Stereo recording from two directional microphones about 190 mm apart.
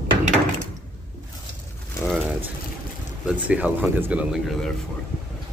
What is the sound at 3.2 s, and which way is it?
Speech, 5° right (ahead or behind).